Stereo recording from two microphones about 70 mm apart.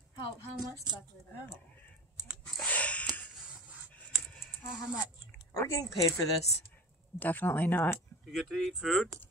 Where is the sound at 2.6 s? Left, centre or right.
Left.